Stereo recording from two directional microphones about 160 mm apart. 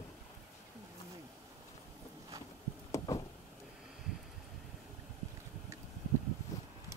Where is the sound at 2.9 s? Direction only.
20° left (ahead or behind).